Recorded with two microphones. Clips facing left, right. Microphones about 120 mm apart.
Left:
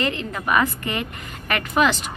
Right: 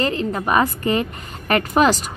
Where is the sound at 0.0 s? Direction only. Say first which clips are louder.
Right 4 dB; 35° right (ahead or behind).